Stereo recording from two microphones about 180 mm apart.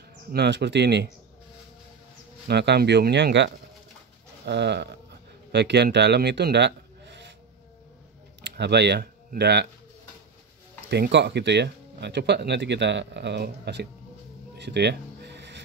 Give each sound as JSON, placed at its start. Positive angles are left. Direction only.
{"t": 0.3, "sound": "speech", "side_deg": -65}
{"t": 2.4, "sound": "speech", "side_deg": -70}
{"t": 8.5, "sound": "speech", "side_deg": -70}
{"t": 10.9, "sound": "speech", "side_deg": -70}
{"t": 14.6, "sound": "a sound", "side_deg": -70}